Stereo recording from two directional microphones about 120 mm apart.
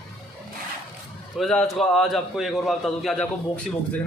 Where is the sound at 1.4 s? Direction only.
5° left (ahead or behind).